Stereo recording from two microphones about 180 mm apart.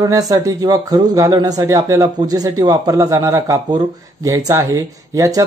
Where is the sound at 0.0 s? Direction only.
20° right (ahead or behind).